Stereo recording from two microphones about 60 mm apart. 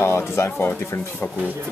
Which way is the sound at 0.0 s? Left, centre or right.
Left.